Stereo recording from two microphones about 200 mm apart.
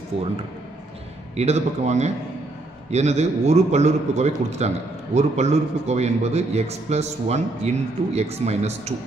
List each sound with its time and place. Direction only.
1.3 s a man's voice: 35° right (ahead or behind)